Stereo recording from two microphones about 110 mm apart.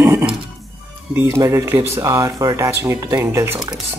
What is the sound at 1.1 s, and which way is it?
Speech, 25° right (ahead or behind).